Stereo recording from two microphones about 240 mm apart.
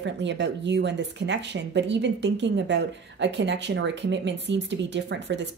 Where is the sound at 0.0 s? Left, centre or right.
Right.